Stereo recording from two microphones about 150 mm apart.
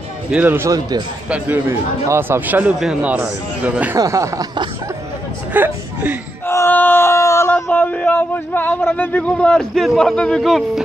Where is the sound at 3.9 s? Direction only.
20° right (ahead or behind).